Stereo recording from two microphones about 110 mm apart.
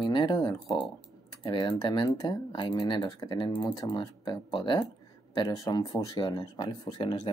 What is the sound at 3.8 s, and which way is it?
Speech, 45° left (ahead or behind).